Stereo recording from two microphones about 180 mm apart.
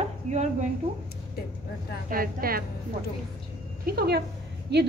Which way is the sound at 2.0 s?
55° right (ahead or behind).